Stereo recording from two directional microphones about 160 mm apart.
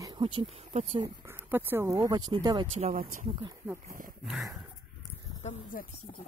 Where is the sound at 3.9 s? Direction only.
60° right (ahead or behind).